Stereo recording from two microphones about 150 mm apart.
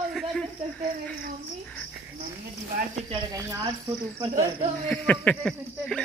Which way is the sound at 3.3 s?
20° right (ahead or behind).